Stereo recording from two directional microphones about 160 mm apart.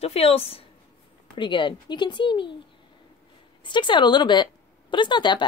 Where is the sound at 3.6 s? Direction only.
30° left (ahead or behind).